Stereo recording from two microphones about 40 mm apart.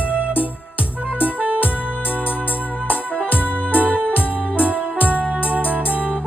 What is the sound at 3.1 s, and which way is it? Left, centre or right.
Music, right.